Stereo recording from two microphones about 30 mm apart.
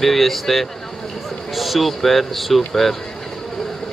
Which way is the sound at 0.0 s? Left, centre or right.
Centre.